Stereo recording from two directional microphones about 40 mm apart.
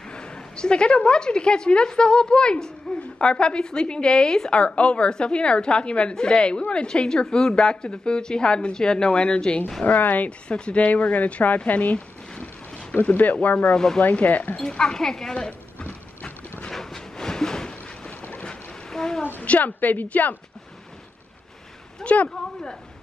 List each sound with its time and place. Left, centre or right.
0.1 s a woman's voice: left
9.8 s a woman's voice: left
10.5 s a woman's voice: left
13.7 s speech: centre
14.2 s a woman's voice: left
14.6 s speech: centre
15.8 s horse: left
16.7 s a sound: centre
19.4 s a woman's voice: left
22.0 s speech: left
22.3 s speech: centre